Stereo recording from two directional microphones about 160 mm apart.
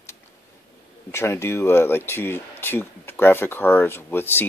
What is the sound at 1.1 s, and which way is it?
Speech, 15° left (ahead or behind).